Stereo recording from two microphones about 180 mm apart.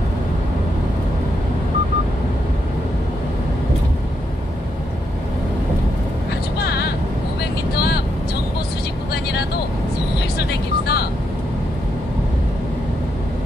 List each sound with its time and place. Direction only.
7.7 s vehicle: 60° left (ahead or behind)
9.1 s vehicle: 65° left (ahead or behind)